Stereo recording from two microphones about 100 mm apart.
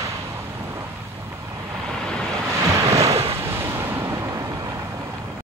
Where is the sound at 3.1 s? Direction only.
90° right.